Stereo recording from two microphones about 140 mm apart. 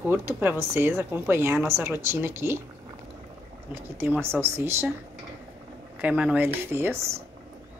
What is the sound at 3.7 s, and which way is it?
Speech, 15° right (ahead or behind).